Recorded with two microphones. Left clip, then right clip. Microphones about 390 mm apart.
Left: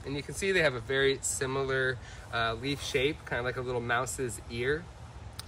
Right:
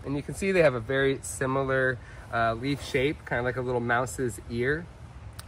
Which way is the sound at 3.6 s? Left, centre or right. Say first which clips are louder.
Right 4 dB; centre.